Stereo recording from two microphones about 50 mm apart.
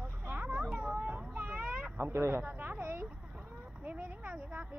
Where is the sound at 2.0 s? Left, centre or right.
Right.